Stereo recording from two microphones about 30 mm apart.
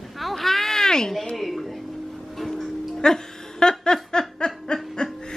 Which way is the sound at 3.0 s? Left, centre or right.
Left.